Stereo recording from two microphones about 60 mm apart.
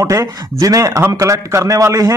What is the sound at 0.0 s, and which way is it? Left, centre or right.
A man's voice, right.